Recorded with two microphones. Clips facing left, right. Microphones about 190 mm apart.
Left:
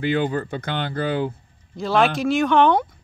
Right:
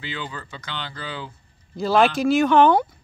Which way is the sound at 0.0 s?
55° left (ahead or behind).